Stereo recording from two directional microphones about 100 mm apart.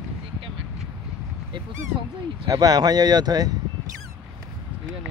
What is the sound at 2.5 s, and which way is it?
Speech, 40° right (ahead or behind).